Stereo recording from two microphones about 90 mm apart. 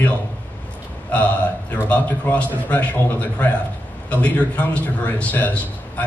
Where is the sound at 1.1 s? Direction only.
15° left (ahead or behind).